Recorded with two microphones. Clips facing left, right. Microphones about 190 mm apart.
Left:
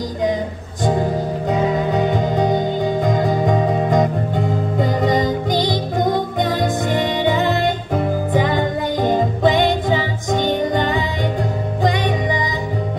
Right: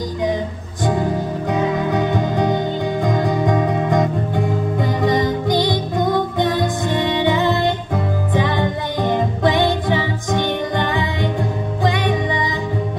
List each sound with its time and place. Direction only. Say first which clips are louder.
1.5 s music: left 1 dB; 20° left (ahead or behind)
9.0 s music: left 1 dB; 20° left (ahead or behind)